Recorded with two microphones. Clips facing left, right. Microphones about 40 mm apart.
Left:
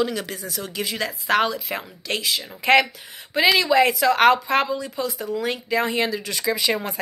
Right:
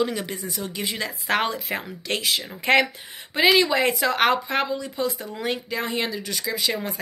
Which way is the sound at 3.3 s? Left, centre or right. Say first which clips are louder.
Left 1 dB; centre.